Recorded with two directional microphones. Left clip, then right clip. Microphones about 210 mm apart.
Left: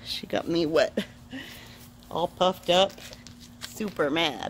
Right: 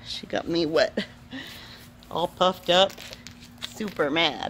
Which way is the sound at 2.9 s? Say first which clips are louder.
Right 3 dB; 30° right (ahead or behind).